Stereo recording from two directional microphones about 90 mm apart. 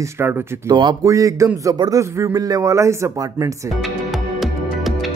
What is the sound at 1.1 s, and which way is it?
A man's voice, 35° right (ahead or behind).